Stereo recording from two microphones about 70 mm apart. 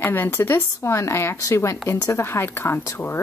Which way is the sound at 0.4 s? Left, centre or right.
Left.